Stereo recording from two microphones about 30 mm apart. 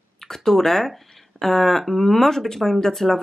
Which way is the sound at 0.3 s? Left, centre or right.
Centre.